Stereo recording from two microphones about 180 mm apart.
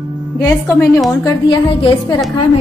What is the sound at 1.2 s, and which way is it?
Speech, 25° left (ahead or behind).